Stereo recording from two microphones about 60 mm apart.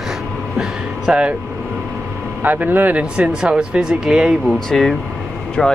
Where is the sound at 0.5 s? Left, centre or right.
Centre.